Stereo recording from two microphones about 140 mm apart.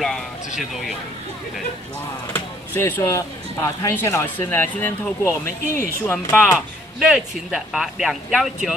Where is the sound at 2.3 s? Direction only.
15° left (ahead or behind).